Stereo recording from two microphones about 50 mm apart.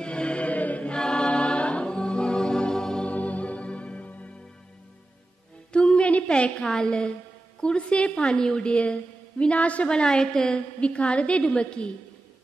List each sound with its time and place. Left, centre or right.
0.0 s chant: left
0.9 s music: centre
3.1 s music: left
5.7 s a sound: centre
7.6 s a woman's voice: left